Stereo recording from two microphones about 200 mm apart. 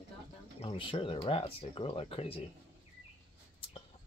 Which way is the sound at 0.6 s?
25° left (ahead or behind).